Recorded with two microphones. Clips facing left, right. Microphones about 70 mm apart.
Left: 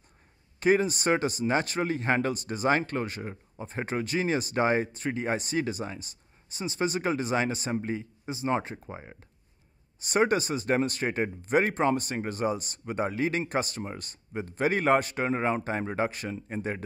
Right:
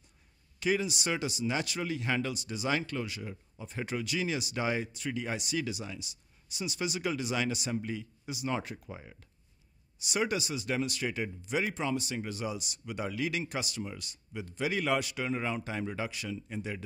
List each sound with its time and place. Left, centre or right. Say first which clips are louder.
0.6 s a man's voice: left 7 dB; left